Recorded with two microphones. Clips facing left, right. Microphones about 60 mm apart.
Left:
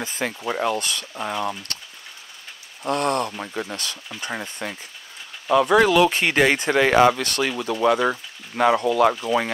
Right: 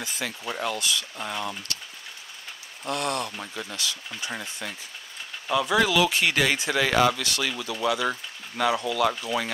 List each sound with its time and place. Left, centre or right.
0.0 s a sound: left
0.5 s speech: left
2.9 s speech: left